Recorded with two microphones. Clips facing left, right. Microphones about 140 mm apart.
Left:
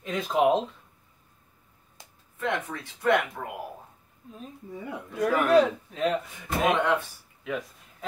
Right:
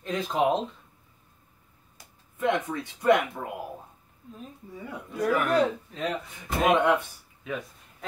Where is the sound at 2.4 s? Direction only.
15° right (ahead or behind).